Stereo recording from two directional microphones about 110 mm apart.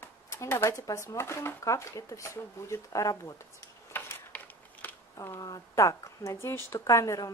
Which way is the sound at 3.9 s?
20° left (ahead or behind).